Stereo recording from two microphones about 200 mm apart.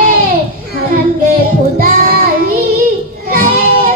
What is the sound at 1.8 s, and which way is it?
Child singing, 50° right (ahead or behind).